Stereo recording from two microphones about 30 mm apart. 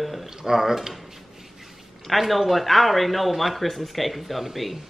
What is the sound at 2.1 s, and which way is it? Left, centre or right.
Speech, centre.